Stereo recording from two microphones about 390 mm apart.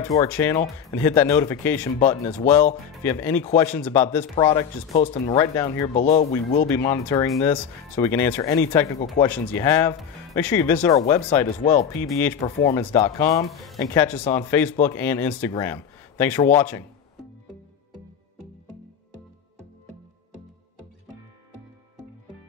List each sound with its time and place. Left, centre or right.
0.1 s speech: centre
3.0 s speech: centre
6.9 s speech: centre
17.9 s music: right
20.7 s music: right